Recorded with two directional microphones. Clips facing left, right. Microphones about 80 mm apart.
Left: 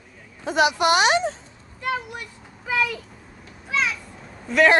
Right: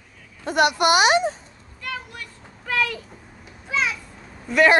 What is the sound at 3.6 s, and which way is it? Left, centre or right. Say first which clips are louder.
Children playing: even; centre.